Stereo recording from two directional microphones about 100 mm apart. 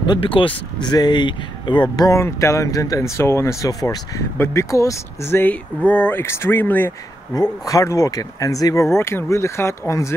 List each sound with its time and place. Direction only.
0.2 s speech: 65° left (ahead or behind)
2.0 s speech: 30° left (ahead or behind)
7.6 s speech: 30° left (ahead or behind)